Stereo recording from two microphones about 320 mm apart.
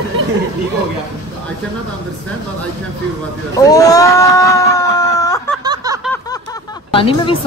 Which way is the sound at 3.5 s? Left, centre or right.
Centre.